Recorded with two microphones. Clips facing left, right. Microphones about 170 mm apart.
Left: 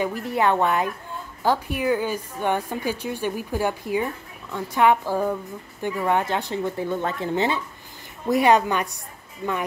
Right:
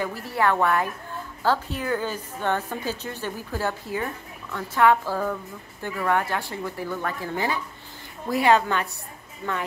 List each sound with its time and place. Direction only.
0.0 s a woman's voice: 20° left (ahead or behind)